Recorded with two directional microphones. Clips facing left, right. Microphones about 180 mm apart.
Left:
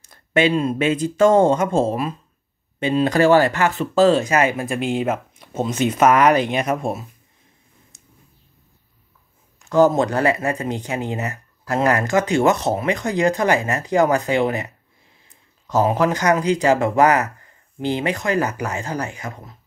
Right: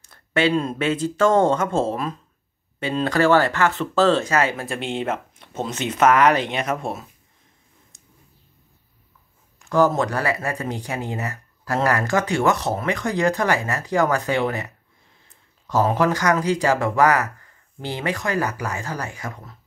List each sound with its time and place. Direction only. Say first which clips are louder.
0.0 s speech: left 3 dB; 15° left (ahead or behind)
9.8 s speech: left 3 dB; 20° left (ahead or behind)
15.8 s speech: left 1 dB; 20° left (ahead or behind)